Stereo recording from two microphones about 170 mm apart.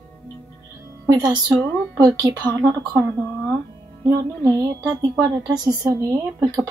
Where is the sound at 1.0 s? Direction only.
20° right (ahead or behind).